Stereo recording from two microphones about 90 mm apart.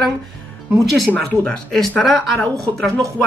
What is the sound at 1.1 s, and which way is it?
Speech, 20° left (ahead or behind).